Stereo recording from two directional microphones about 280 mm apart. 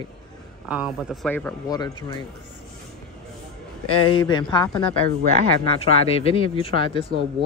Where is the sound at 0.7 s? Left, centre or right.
Centre.